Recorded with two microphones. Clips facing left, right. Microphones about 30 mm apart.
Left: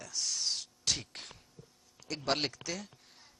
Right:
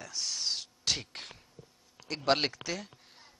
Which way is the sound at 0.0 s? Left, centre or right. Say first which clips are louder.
Right 1 dB; centre.